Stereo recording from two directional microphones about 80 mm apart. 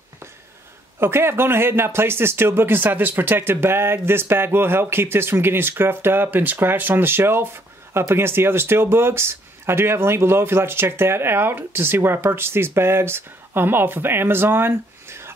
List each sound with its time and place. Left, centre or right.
0.9 s speech: right